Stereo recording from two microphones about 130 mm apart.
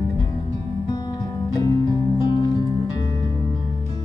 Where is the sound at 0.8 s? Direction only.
30° left (ahead or behind).